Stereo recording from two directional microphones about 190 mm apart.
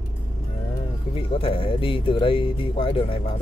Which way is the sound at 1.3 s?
30° left (ahead or behind).